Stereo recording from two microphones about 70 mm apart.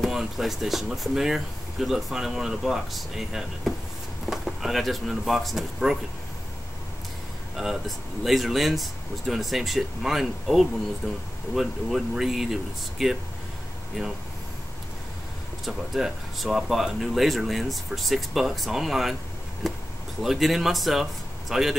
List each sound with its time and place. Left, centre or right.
0.0 s speech: centre
7.5 s speech: centre
11.0 s speech: centre
11.5 s speech: centre
15.6 s speech: centre